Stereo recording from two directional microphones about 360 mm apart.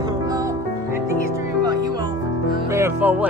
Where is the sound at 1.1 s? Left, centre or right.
Left.